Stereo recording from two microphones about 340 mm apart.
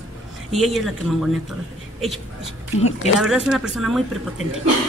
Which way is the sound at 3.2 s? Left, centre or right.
Centre.